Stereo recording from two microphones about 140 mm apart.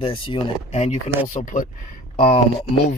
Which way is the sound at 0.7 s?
55° left (ahead or behind).